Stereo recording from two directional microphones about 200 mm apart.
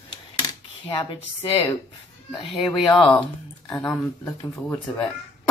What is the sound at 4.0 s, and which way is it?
Speech, 10° left (ahead or behind).